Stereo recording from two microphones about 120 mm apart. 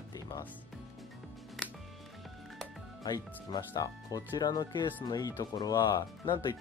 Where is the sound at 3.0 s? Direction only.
30° left (ahead or behind).